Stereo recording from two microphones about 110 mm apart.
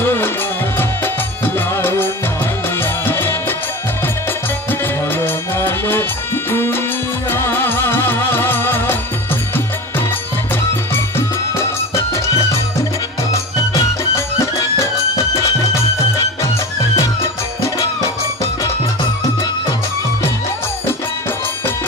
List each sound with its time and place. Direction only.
0.0 s music: 20° left (ahead or behind)
1.7 s music: 20° left (ahead or behind)
4.6 s music: 20° left (ahead or behind)
10.9 s music: 20° left (ahead or behind)
13.3 s music: 30° left (ahead or behind)